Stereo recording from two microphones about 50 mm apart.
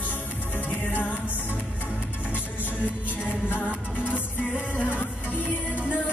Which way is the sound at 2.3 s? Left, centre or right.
Left.